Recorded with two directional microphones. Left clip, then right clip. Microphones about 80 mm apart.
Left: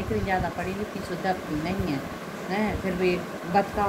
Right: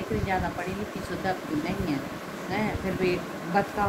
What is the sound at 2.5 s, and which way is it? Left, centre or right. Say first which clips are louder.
Speech: left 2 dB; left.